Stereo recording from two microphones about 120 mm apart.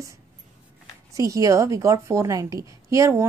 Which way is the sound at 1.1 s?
30° right (ahead or behind).